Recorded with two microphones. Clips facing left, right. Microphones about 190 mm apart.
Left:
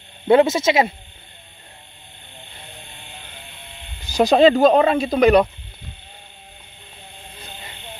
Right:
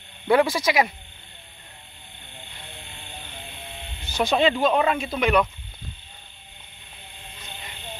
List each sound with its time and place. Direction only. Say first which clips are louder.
0.3 s speech: left 5 dB; 25° left (ahead or behind)
4.1 s speech: left 8 dB; 40° left (ahead or behind)